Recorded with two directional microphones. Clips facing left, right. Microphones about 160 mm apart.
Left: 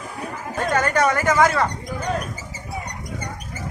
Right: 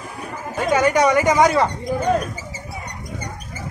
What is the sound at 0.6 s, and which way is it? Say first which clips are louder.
Speech: right 3 dB; 10° right (ahead or behind).